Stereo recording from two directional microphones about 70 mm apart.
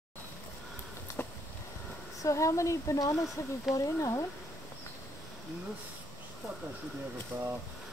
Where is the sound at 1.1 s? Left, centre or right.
Left.